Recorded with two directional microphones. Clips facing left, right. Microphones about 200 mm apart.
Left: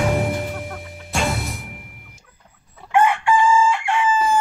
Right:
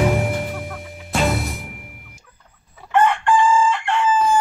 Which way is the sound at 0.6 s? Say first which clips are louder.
Even; centre (ahead or behind).